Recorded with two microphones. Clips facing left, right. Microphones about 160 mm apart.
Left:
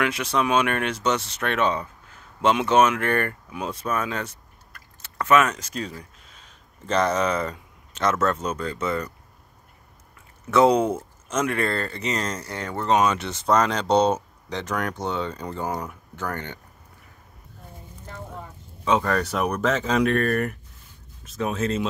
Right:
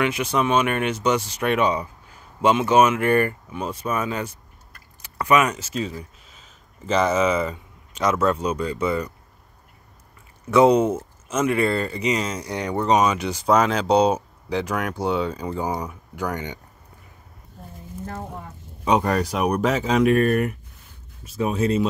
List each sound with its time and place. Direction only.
0.0 s speech: 5° right (ahead or behind)
10.5 s speech: 5° right (ahead or behind)
18.9 s speech: 15° right (ahead or behind)